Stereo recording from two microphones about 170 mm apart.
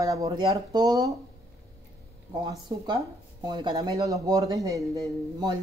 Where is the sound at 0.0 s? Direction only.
20° right (ahead or behind).